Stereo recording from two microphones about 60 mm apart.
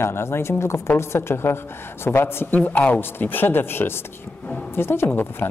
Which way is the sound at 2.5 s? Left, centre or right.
Left.